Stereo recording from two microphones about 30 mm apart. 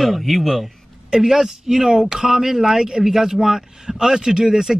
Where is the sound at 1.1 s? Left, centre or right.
Centre.